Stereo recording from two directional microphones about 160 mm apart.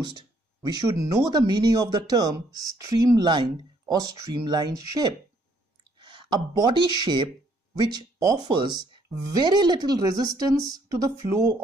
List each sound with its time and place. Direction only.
0.1 s speech: 30° right (ahead or behind)